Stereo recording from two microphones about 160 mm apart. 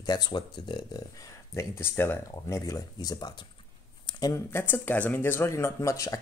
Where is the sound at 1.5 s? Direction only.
15° left (ahead or behind).